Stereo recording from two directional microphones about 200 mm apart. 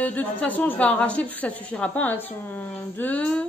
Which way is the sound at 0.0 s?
10° left (ahead or behind).